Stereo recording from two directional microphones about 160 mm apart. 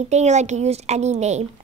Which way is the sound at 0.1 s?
45° right (ahead or behind).